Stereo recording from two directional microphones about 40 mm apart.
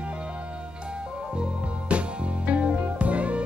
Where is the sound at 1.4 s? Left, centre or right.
Right.